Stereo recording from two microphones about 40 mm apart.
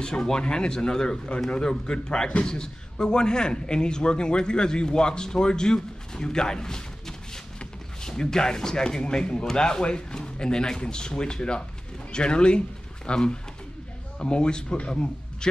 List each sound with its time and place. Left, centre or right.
0.0 s a man's voice: centre